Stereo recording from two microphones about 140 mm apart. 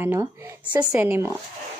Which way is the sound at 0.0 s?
20° right (ahead or behind).